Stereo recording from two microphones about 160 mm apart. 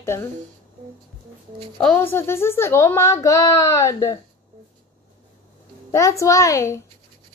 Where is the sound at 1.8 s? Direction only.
10° left (ahead or behind).